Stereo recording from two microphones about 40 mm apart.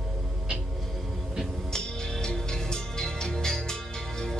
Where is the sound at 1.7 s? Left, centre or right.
Centre.